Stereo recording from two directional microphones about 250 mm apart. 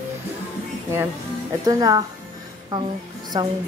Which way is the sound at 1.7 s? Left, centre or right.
Centre.